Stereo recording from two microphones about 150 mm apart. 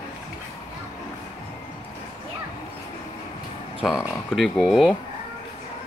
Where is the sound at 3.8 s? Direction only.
Centre (ahead or behind).